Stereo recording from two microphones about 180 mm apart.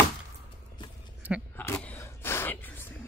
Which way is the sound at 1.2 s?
10° right (ahead or behind).